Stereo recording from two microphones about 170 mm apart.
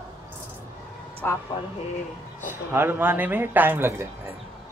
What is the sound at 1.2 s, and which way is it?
Speech, 10° left (ahead or behind).